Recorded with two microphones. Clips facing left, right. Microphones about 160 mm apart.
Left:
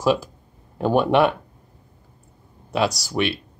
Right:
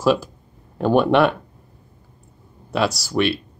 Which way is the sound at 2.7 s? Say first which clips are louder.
Right 2 dB; 15° left (ahead or behind).